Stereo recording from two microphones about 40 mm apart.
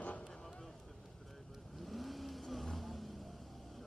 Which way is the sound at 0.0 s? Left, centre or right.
Left.